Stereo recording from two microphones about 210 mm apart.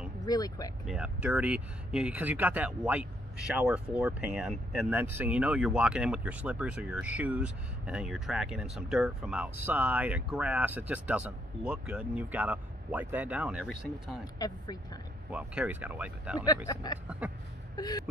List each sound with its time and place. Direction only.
0.2 s speech: 20° left (ahead or behind)
0.8 s speech: 5° right (ahead or behind)
14.4 s speech: 20° left (ahead or behind)
15.3 s speech: 5° right (ahead or behind)
16.4 s speech: 20° left (ahead or behind)